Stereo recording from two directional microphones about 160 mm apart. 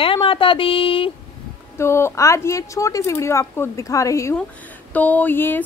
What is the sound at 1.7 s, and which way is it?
Speech, 15° left (ahead or behind).